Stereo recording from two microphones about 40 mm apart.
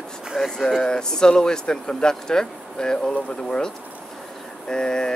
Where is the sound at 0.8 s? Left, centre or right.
Left.